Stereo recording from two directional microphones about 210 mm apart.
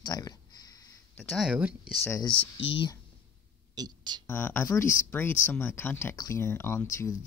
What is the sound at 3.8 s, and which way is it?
Speech, 20° right (ahead or behind).